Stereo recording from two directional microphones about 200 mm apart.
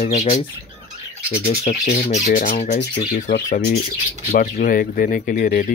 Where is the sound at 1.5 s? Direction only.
35° left (ahead or behind).